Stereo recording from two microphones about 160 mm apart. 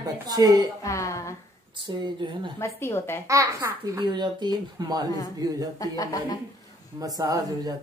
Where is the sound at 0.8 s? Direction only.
20° left (ahead or behind).